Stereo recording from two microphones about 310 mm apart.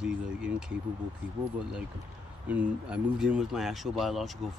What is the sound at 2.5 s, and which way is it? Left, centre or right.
Speech, centre.